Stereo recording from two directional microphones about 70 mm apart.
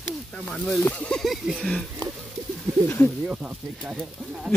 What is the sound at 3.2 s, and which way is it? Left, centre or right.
Speech, centre.